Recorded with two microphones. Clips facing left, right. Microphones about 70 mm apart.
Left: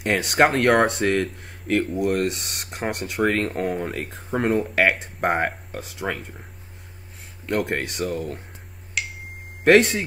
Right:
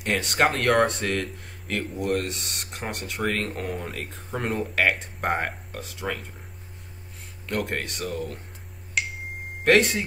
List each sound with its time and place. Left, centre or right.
0.0 s speech: centre
7.4 s speech: centre
9.7 s speech: centre